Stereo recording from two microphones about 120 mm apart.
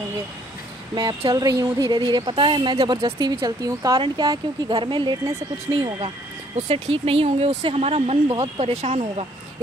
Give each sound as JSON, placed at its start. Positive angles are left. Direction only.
{"t": 1.3, "sound": "a woman's voice", "side_deg": -30}
{"t": 6.0, "sound": "speech", "side_deg": -60}